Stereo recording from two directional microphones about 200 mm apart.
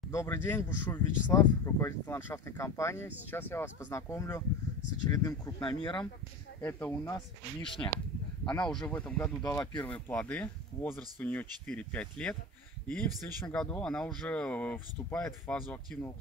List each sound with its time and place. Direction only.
0.1 s speech: 15° left (ahead or behind)
6.6 s speech: 10° left (ahead or behind)
7.6 s speech: 25° left (ahead or behind)
8.5 s speech: 5° left (ahead or behind)
9.4 s speech: 15° left (ahead or behind)
13.5 s speech: 5° left (ahead or behind)